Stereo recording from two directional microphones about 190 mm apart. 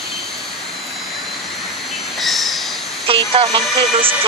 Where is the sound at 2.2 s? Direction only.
Centre (ahead or behind).